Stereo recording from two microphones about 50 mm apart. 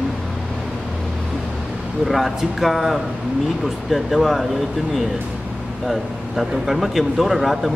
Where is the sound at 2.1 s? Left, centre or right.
Centre.